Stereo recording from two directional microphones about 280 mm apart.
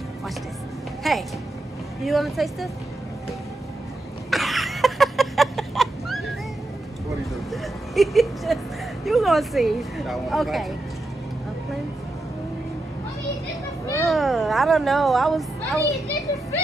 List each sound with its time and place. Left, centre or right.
1.0 s speech: centre
4.3 s a sound: centre
7.5 s whimper: centre
9.0 s speech: centre
13.9 s cat: centre